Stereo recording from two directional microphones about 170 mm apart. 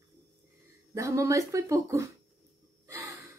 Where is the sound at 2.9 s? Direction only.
20° right (ahead or behind).